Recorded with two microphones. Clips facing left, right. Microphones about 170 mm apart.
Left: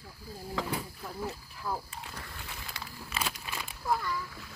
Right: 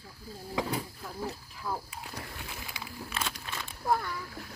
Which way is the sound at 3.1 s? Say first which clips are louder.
Left 2 dB; 5° left (ahead or behind).